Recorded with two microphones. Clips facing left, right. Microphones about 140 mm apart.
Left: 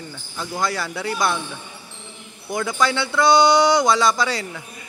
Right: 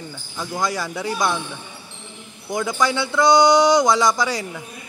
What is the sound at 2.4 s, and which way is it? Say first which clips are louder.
A man's voice: even; 15° right (ahead or behind).